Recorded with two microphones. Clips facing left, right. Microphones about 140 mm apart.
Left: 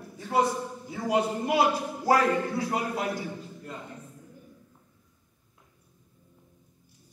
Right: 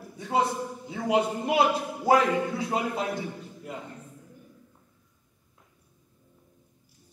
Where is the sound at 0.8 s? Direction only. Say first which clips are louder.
Right 1 dB; 20° right (ahead or behind).